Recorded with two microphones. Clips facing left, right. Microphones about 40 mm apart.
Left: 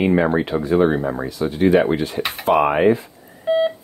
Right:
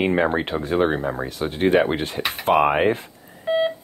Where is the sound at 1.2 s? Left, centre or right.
Right.